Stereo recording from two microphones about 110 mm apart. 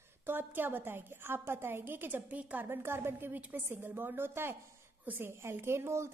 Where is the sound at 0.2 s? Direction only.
20° right (ahead or behind).